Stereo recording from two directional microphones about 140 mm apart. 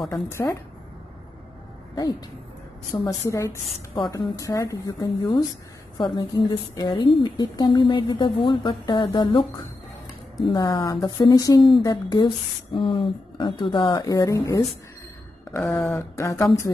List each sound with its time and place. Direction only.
0.1 s a woman's voice: 20° left (ahead or behind)
2.0 s a woman's voice: 30° left (ahead or behind)
15.5 s a sound: 5° left (ahead or behind)
16.2 s a woman's voice: 20° left (ahead or behind)